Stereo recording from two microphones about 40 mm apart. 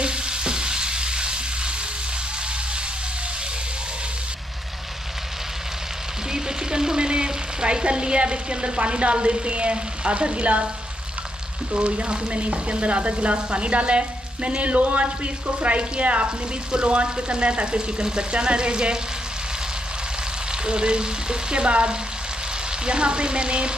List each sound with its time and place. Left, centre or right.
0.0 s stir: right
6.3 s frying: centre; by 10.7 s right
11.7 s stir: right
16.7 s speech: right
20.6 s speech: right